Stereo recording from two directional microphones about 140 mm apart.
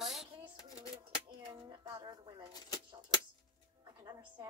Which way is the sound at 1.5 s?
30° right (ahead or behind).